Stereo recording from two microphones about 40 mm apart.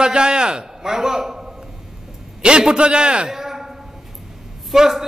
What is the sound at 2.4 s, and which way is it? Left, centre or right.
Speech, right.